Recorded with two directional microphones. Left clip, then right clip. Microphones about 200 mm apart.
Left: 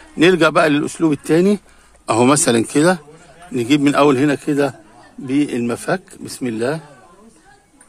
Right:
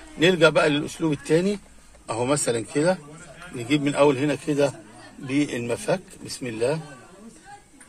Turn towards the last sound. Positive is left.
turn(degrees=50)  # may be behind; listen again after turning